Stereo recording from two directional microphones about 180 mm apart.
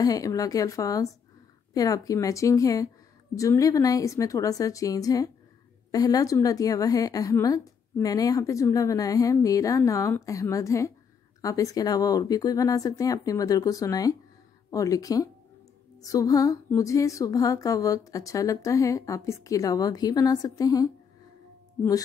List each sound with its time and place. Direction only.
0.0 s a woman's voice: 20° left (ahead or behind)